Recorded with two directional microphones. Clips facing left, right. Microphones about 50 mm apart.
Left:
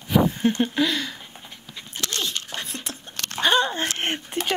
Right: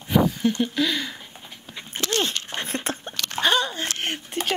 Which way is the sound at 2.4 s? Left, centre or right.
Right.